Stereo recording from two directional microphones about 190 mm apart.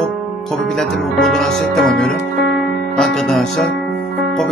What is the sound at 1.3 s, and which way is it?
Speech, centre (ahead or behind).